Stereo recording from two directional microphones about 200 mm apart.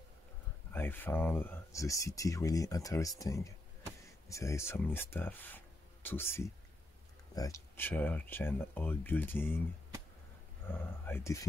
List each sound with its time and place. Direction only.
0.7 s speech: 10° left (ahead or behind)
10.7 s speech: 10° left (ahead or behind)